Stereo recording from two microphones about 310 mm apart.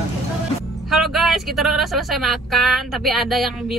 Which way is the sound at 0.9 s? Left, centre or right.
Centre.